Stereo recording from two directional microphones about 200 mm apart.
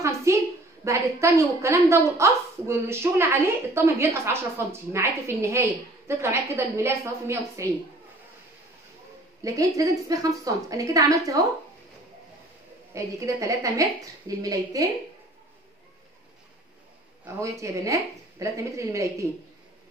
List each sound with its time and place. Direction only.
0.0 s a sound: 15° right (ahead or behind)
0.8 s a woman's voice: 15° right (ahead or behind)
9.4 s a woman's voice: 15° right (ahead or behind)
12.9 s a woman's voice: 15° right (ahead or behind)
17.4 s a woman's voice: 15° right (ahead or behind)